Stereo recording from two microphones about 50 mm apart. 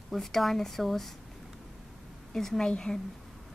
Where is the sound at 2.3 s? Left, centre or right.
Centre.